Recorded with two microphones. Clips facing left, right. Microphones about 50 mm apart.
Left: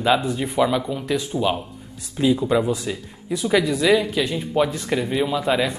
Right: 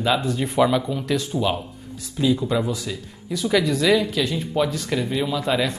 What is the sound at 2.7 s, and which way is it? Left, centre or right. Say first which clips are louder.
Speech: left 3 dB; left.